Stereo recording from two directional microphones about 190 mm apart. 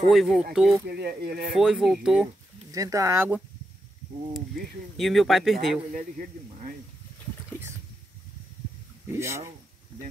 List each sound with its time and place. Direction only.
0.1 s speech: centre (ahead or behind)
0.8 s speech: 55° right (ahead or behind)
1.5 s speech: 5° right (ahead or behind)
2.7 s speech: 15° right (ahead or behind)
4.9 s speech: centre (ahead or behind)
9.1 s speech: 15° right (ahead or behind)